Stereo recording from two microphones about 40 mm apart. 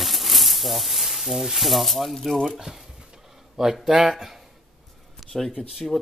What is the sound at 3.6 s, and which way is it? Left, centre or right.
Speech, centre.